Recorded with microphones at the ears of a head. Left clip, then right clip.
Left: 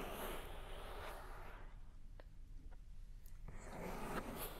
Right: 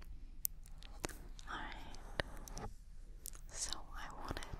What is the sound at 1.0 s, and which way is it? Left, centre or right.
Whispering, right.